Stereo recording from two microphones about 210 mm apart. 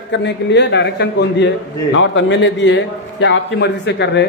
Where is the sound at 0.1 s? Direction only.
55° left (ahead or behind).